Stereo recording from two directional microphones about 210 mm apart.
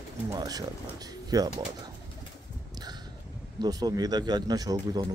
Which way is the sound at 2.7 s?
20° right (ahead or behind).